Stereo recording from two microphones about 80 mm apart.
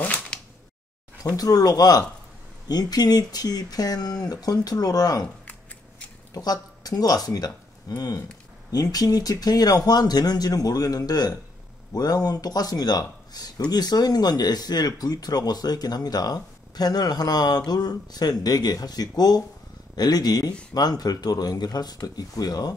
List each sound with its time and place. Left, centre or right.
0.0 s a sound: centre
1.3 s speech: left
5.4 s scissors: centre
6.3 s speech: left